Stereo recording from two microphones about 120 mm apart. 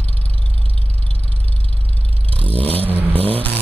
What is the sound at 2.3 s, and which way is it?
Vehicle, 50° right (ahead or behind).